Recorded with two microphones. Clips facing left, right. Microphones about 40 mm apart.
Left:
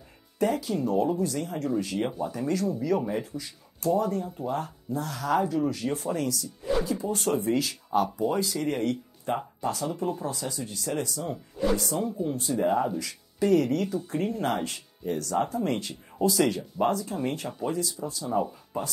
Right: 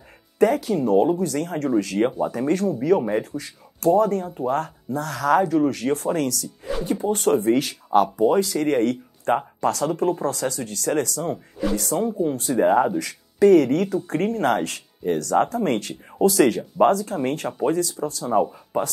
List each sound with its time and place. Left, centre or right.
0.4 s speech: right
9.6 s speech: right